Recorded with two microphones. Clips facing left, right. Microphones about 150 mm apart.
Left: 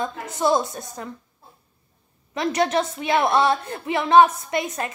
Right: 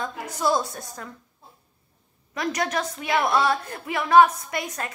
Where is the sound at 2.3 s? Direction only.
25° left (ahead or behind).